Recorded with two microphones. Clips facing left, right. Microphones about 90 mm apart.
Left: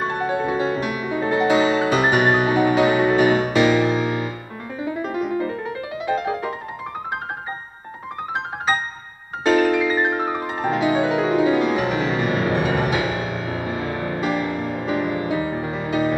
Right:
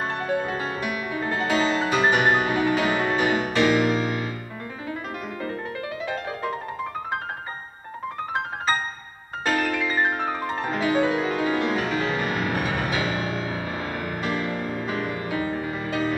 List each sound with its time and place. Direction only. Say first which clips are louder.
0.1 s music: left 4 dB; 10° left (ahead or behind)
9.5 s piano: left 7 dB; 15° left (ahead or behind)
10.7 s music: left 3 dB; 15° left (ahead or behind)
14.9 s music: left 6 dB; 15° left (ahead or behind)